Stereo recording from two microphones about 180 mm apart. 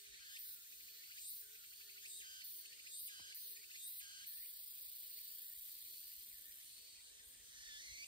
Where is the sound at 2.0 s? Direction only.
25° left (ahead or behind).